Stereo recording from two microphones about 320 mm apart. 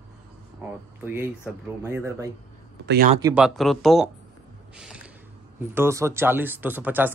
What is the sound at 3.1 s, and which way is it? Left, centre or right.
Speech, centre.